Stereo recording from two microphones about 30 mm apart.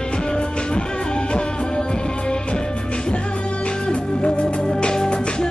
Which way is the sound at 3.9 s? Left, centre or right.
Left.